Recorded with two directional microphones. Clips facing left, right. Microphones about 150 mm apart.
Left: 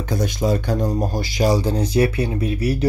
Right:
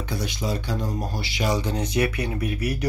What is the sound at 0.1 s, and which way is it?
Speech, 50° left (ahead or behind).